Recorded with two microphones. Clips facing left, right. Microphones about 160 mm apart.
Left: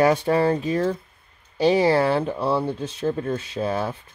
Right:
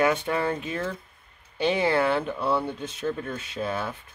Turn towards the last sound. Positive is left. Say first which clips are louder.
# left 5 dB
turn(degrees=30)  # may be behind; listen again after turning